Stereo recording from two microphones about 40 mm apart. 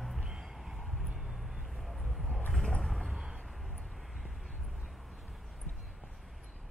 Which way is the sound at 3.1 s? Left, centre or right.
Centre.